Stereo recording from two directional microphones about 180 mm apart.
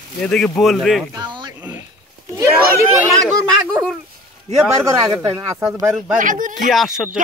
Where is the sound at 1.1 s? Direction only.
25° right (ahead or behind).